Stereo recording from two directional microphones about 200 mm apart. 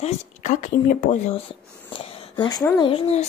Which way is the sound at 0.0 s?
35° left (ahead or behind).